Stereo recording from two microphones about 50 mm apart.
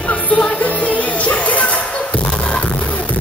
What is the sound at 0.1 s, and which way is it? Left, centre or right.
Music, left.